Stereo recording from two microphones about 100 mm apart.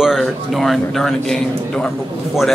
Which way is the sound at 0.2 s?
Centre (ahead or behind).